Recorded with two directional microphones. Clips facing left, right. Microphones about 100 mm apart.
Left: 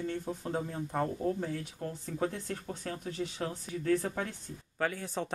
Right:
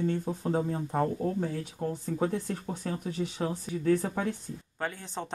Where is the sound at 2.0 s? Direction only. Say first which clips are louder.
Right 3 dB; 15° right (ahead or behind).